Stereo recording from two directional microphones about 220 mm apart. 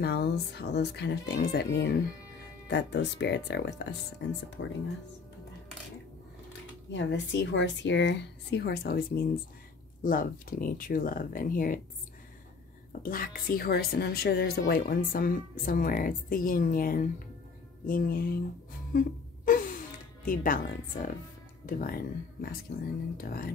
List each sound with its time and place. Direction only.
0.0 s speech: 45° left (ahead or behind)
6.9 s a woman's voice: 55° left (ahead or behind); by 11.8 s 40° left (ahead or behind)
13.0 s a woman's voice: 40° left (ahead or behind)
18.9 s a sound: 40° left (ahead or behind)
20.2 s a woman's voice: 40° left (ahead or behind)